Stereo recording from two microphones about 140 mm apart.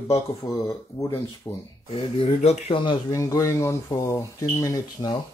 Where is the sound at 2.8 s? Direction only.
30° left (ahead or behind).